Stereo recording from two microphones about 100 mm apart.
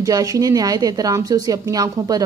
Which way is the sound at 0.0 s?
40° right (ahead or behind).